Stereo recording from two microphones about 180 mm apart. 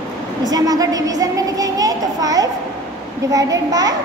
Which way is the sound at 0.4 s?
20° right (ahead or behind).